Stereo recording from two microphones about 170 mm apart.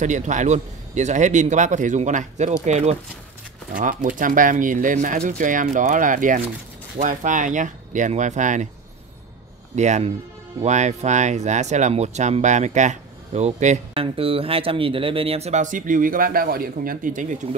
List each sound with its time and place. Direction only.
0.0 s speech: 45° right (ahead or behind)
3.7 s speech: 50° right (ahead or behind)
9.8 s speech: 45° right (ahead or behind)